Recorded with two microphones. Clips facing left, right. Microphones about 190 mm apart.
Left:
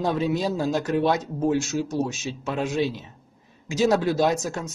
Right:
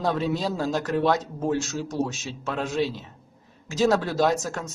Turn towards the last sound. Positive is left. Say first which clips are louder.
# even
turn(degrees=15)  # may be behind; listen again after turning